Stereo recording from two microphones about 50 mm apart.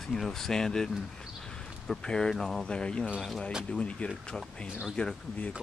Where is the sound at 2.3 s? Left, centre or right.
Centre.